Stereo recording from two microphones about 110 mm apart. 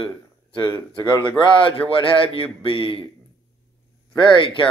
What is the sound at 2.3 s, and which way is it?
Speech, 55° left (ahead or behind).